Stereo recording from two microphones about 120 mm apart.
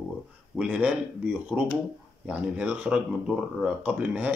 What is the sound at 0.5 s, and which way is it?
Speech, 10° right (ahead or behind).